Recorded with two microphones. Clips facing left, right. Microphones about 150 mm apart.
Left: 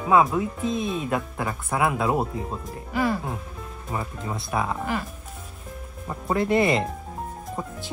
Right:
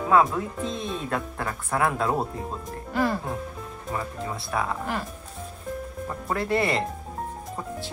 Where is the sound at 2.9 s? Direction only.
Centre (ahead or behind).